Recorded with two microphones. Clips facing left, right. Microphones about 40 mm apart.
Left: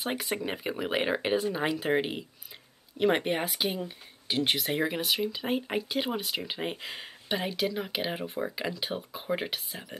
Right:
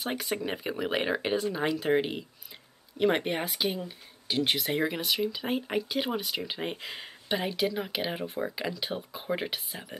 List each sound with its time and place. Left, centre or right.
0.0 s speech: centre